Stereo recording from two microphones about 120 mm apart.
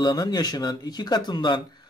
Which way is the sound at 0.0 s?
35° left (ahead or behind).